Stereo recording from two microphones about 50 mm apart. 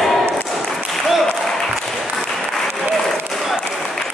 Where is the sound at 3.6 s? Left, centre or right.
Centre.